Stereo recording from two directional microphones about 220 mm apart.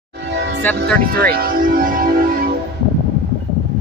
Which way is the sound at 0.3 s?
50° right (ahead or behind).